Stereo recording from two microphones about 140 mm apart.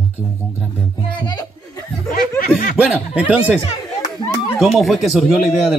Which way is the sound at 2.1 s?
90° left.